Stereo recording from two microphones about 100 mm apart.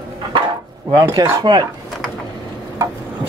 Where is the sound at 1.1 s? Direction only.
45° right (ahead or behind).